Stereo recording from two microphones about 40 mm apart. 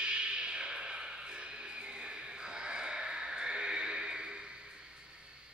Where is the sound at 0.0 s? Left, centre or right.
Right.